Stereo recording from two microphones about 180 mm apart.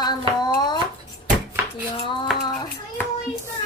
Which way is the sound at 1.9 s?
25° left (ahead or behind).